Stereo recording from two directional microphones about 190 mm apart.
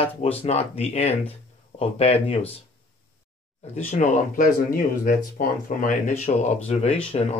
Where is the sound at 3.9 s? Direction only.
40° left (ahead or behind).